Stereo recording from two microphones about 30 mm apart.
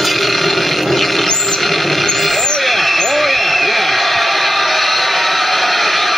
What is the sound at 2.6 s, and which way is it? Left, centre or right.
Vehicle, centre.